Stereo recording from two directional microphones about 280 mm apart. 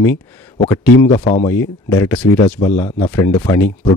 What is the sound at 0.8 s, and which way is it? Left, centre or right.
Speech, left.